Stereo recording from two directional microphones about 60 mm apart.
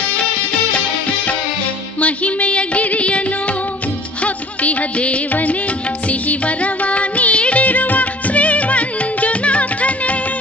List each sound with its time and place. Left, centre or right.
2.0 s music: left
4.2 s music: left